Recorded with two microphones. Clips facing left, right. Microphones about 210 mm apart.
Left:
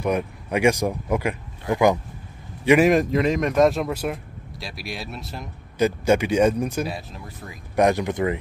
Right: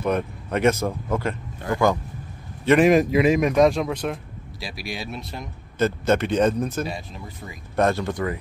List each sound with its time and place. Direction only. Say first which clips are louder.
0.0 s a man's voice: even; 10° left (ahead or behind)
2.9 s a man's voice: right 2 dB; 5° right (ahead or behind)
5.8 s speech: left 1 dB; 10° left (ahead or behind)
7.7 s speech: left 2 dB; 15° left (ahead or behind)